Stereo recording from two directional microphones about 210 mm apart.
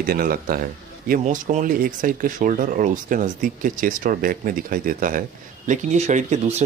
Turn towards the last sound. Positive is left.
turn(degrees=-35)  # may be behind; listen again after turning